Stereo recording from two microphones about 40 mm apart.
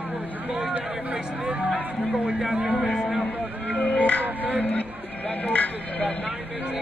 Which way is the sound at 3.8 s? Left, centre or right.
Left.